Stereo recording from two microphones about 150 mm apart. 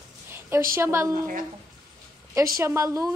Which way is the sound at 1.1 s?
65° right (ahead or behind).